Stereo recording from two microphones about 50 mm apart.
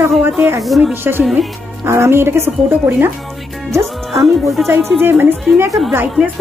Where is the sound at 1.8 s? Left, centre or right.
Right.